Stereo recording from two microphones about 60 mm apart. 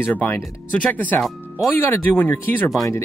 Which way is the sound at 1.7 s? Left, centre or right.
Left.